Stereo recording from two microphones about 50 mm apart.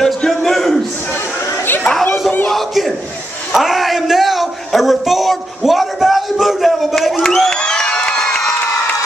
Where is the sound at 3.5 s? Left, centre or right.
Centre.